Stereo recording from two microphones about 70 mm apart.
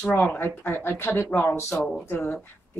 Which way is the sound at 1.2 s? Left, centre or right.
Left.